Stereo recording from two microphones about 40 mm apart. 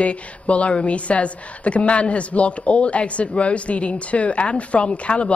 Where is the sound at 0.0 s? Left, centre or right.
Left.